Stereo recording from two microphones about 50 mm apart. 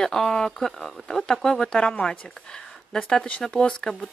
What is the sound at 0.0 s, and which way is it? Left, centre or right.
Speech, centre.